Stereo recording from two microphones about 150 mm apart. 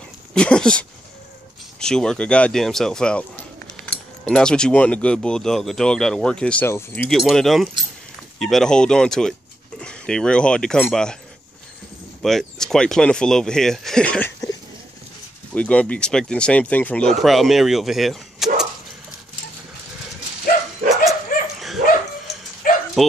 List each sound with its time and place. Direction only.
0.3 s speech: 5° left (ahead or behind)
7.1 s speech: centre (ahead or behind)
12.2 s speech: 5° left (ahead or behind)
15.5 s speech: 10° left (ahead or behind)
20.9 s dog: centre (ahead or behind)
22.3 s dog: 75° left (ahead or behind)
23.0 s speech: centre (ahead or behind)